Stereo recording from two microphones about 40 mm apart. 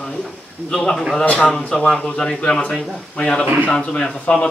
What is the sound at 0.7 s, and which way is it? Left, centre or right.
Speech, centre.